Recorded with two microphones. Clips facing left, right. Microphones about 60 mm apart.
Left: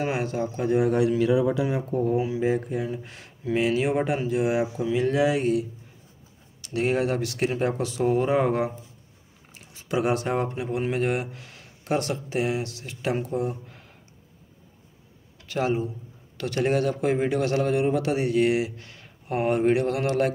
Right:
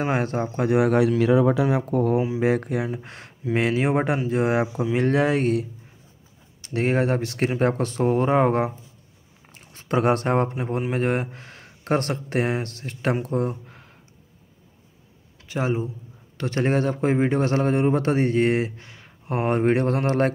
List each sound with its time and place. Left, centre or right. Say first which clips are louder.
0.1 s speech: right 3 dB; right
0.7 s speech: right 2 dB; right
1.9 s speech: right 3 dB; right
2.1 s speech: right 2 dB; right
2.4 s speech: right 3 dB; right
2.9 s speech: right 1 dB; right
6.6 s a man's voice: right 2 dB; right
9.7 s a man's voice: right 3 dB; right
15.4 s speech: even; right
16.3 s a man's voice: right 1 dB; right
18.8 s a sound: right 1 dB; right
19.2 s speech: even; right
19.5 s a man's voice: right 2 dB; right